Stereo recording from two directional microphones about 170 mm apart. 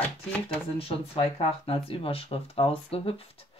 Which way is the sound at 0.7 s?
35° left (ahead or behind).